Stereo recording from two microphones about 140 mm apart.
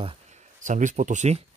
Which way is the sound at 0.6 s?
60° right (ahead or behind).